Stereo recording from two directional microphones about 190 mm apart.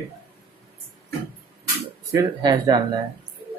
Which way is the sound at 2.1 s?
20° right (ahead or behind).